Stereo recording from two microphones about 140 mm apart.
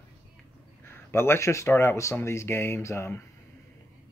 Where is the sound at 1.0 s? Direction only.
15° left (ahead or behind).